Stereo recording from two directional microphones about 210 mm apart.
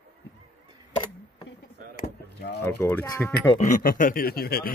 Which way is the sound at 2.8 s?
10° left (ahead or behind).